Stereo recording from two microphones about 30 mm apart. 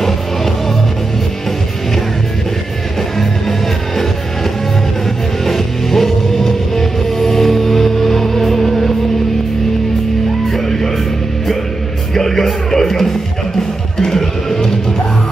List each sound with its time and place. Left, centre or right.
5.4 s music: centre
10.5 s music: centre
12.1 s music: centre